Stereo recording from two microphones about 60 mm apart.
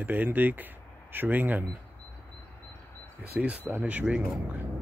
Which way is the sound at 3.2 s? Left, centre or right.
Right.